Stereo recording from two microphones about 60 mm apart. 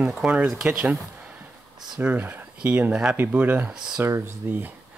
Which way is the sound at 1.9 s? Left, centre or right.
Right.